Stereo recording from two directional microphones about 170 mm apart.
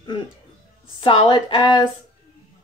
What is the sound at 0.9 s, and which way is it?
Speech, 30° left (ahead or behind).